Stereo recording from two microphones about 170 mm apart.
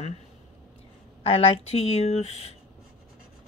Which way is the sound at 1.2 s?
35° left (ahead or behind).